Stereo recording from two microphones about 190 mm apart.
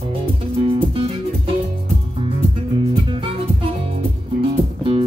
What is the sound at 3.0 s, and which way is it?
Music, 25° right (ahead or behind).